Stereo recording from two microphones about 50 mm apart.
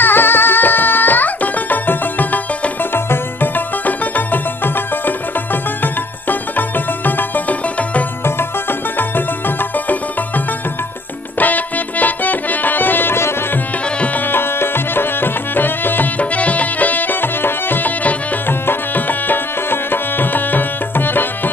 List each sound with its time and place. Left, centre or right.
0.0 s music: left
7.1 s music: left
11.3 s music: left
14.3 s music: left
16.2 s music: left